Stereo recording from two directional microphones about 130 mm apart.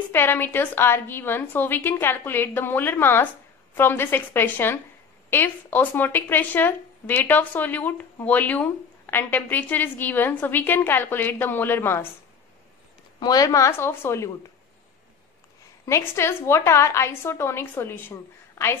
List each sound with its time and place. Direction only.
0.1 s speech: 15° left (ahead or behind)
13.2 s a woman's voice: 30° left (ahead or behind)
15.8 s a woman's voice: 20° left (ahead or behind)